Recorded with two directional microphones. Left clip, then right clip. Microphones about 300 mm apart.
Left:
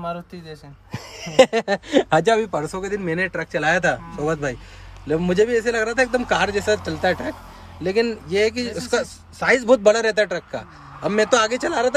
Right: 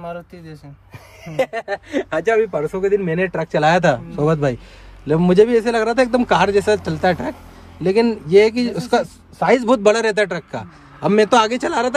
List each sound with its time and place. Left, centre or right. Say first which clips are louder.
0.9 s speech: left 7 dB; left
2.4 s a man's voice: right 6 dB; centre